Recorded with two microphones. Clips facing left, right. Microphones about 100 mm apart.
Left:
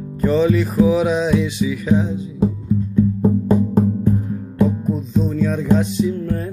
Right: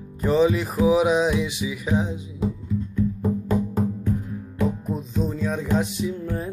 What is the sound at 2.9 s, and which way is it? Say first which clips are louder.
Music: left 8 dB; 25° left (ahead or behind).